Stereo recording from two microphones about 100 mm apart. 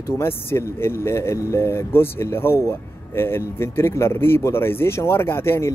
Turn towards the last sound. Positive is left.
turn(degrees=25)  # may be behind; listen again after turning